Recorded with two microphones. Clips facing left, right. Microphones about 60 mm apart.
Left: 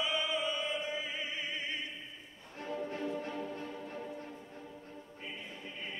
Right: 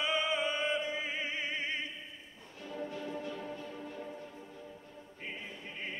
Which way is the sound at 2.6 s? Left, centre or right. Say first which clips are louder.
Left 3 dB; left.